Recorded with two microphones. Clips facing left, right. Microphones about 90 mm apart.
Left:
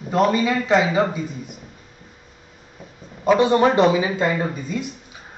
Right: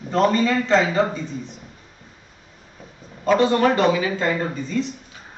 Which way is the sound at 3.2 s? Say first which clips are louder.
Left 1 dB; 15° left (ahead or behind).